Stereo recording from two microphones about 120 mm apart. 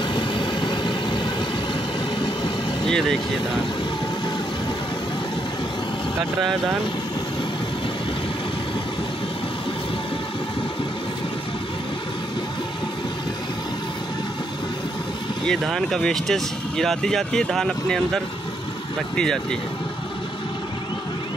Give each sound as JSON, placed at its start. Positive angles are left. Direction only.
{"t": 0.1, "sound": "vehicle", "side_deg": 40}
{"t": 2.9, "sound": "speech", "side_deg": 5}
{"t": 15.6, "sound": "speech", "side_deg": 0}